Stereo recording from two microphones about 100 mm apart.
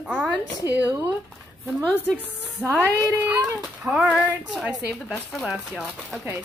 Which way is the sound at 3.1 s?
20° right (ahead or behind).